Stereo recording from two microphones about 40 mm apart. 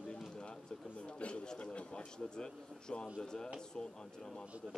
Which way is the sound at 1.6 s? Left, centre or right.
Left.